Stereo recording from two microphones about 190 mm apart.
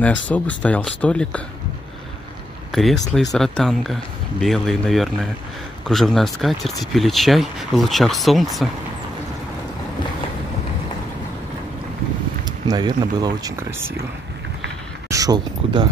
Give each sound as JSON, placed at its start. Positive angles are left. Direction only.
{"t": 0.0, "sound": "speech", "side_deg": 10}
{"t": 2.7, "sound": "speech", "side_deg": 0}
{"t": 12.6, "sound": "speech", "side_deg": -20}
{"t": 15.0, "sound": "speech", "side_deg": -20}